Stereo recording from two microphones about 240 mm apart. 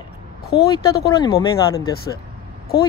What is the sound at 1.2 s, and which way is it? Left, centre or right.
Speech, centre.